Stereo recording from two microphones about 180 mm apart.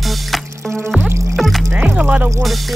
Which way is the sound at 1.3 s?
Centre (ahead or behind).